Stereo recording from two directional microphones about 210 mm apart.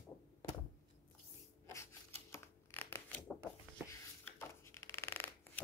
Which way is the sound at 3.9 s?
10° left (ahead or behind).